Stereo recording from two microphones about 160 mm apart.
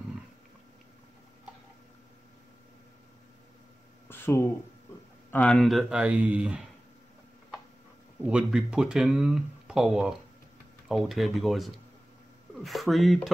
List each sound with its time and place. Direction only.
4.1 s speech: 15° left (ahead or behind)
5.3 s speech: 5° left (ahead or behind)
8.2 s speech: 5° right (ahead or behind)